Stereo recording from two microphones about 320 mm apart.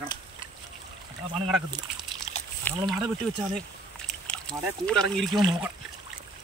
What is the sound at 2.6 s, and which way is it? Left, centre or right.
Speech, centre.